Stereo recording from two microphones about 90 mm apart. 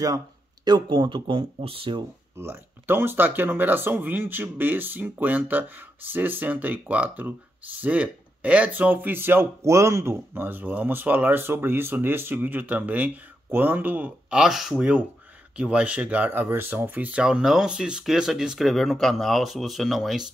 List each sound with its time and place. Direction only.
0.7 s speech: 60° right (ahead or behind); by 2.0 s 75° right (ahead or behind)
2.3 s speech: 25° right (ahead or behind)
14.4 s speech: 5° right (ahead or behind)